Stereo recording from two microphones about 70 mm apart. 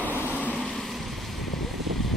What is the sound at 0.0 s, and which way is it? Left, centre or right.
Vehicle, left.